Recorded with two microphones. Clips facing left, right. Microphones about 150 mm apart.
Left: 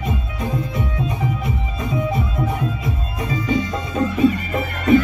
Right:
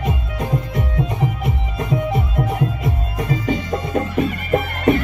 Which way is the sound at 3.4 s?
60° right (ahead or behind).